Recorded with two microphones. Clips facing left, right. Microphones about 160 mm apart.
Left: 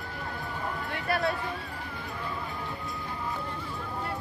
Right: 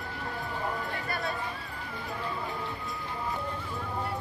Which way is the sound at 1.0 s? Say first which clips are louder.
Left 10 dB; 70° left (ahead or behind).